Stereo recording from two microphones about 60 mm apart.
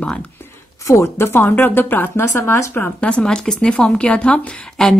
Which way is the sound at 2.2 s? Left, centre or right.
Left.